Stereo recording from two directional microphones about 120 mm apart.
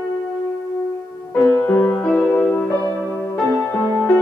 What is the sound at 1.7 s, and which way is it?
Music, 10° left (ahead or behind).